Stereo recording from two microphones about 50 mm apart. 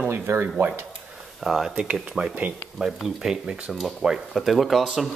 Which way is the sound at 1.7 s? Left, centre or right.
Right.